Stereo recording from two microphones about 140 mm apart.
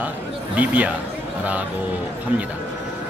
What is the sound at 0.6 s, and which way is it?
Speech, 10° right (ahead or behind).